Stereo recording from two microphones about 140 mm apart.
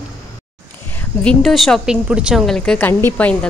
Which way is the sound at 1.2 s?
Centre (ahead or behind).